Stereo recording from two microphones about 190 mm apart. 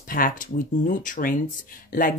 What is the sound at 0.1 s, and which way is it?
Speech, 45° left (ahead or behind).